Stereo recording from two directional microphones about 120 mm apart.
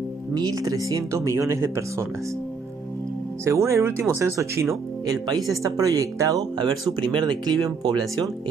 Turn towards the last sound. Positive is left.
turn(degrees=-35)  # may be behind; listen again after turning